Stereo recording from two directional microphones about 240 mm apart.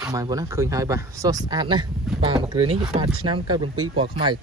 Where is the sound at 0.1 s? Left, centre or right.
Centre.